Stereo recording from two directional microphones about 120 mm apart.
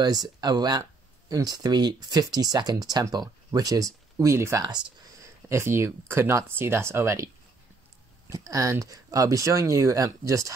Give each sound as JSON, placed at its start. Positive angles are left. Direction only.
{"t": 0.0, "sound": "speech", "side_deg": -35}
{"t": 8.3, "sound": "speech", "side_deg": -30}